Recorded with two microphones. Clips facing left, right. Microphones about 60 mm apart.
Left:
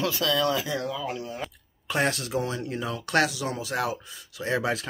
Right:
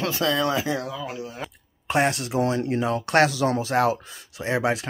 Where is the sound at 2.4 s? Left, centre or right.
Right.